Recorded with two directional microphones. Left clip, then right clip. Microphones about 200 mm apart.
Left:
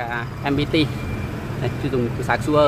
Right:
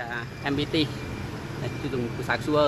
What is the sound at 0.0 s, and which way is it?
Speech, 10° left (ahead or behind).